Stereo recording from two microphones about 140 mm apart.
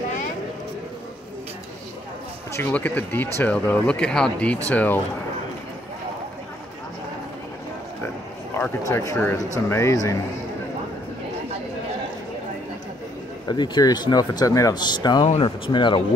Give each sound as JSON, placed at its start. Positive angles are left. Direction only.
{"t": 2.5, "sound": "speech", "side_deg": 15}
{"t": 8.5, "sound": "speech", "side_deg": 20}
{"t": 13.5, "sound": "speech", "side_deg": 30}
{"t": 15.2, "sound": "speech", "side_deg": 45}